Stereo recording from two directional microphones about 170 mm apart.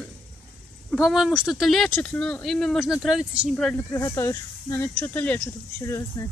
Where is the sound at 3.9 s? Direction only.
15° left (ahead or behind).